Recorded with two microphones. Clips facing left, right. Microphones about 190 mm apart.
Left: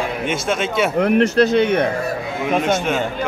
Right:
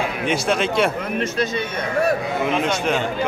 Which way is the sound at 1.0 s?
70° left (ahead or behind).